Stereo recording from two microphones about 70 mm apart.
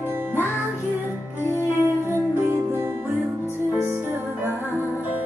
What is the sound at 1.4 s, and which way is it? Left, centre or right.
Music, left.